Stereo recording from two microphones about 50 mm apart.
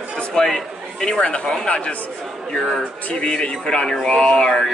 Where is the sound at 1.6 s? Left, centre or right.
Left.